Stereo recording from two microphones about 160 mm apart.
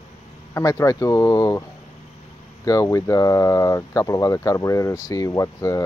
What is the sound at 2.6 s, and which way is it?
Speech, 20° left (ahead or behind).